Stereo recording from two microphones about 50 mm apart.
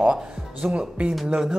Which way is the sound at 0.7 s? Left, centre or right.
Centre.